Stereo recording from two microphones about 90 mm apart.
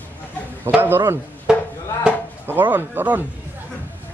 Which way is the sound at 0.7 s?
20° right (ahead or behind).